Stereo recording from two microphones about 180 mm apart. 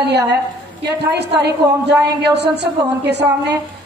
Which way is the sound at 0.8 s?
70° right (ahead or behind).